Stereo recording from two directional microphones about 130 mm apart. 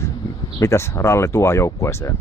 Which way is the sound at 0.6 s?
20° left (ahead or behind).